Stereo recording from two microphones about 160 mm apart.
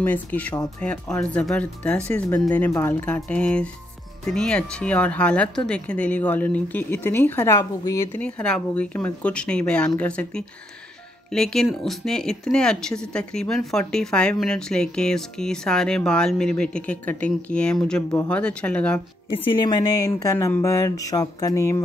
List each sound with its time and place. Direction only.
0.0 s speech: 10° left (ahead or behind)
8.2 s speech: 5° left (ahead or behind)
19.3 s a woman's voice: 30° left (ahead or behind)